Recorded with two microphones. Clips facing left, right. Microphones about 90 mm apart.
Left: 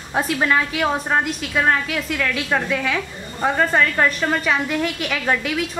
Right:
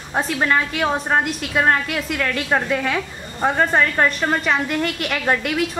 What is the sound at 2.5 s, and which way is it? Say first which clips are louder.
A woman's voice: right 2 dB; 15° right (ahead or behind).